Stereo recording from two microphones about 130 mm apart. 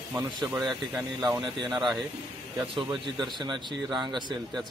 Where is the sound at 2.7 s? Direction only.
40° right (ahead or behind).